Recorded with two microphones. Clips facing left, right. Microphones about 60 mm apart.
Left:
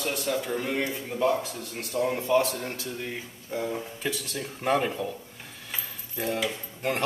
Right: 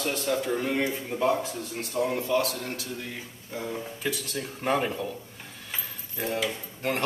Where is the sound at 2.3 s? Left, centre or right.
Centre.